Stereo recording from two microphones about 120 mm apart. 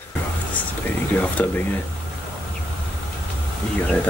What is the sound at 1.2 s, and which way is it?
Speech, 10° left (ahead or behind).